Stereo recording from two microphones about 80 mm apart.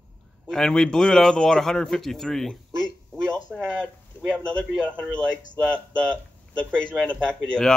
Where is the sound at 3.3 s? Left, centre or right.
Centre.